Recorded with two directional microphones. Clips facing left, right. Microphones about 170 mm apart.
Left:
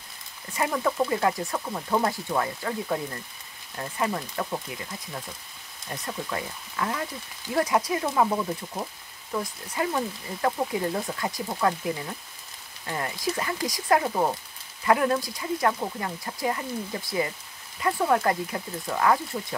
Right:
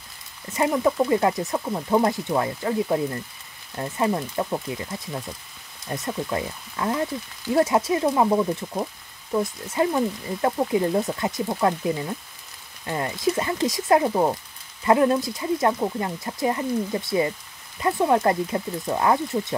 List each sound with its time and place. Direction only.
0.5 s speech: 20° right (ahead or behind)